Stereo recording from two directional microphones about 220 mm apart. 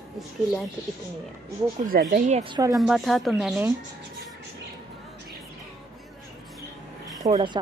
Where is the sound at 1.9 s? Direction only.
45° right (ahead or behind).